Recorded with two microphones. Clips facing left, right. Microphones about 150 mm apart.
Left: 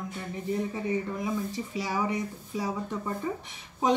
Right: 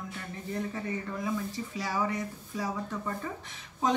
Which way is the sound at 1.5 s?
15° left (ahead or behind).